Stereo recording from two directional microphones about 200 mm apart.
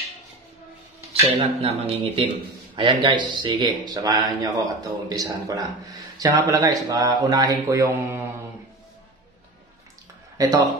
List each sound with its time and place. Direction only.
1.2 s speech: 30° right (ahead or behind); by 8.2 s 10° right (ahead or behind)
10.3 s speech: 20° right (ahead or behind)